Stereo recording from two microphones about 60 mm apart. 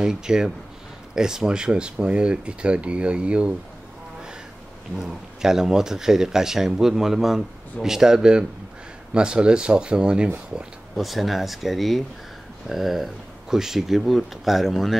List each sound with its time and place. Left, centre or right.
0.0 s speech: centre
4.9 s speech: centre
11.0 s speech: centre